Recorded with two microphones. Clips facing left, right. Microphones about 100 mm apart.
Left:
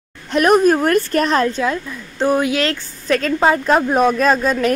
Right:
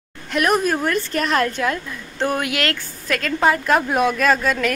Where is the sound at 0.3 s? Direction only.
40° left (ahead or behind).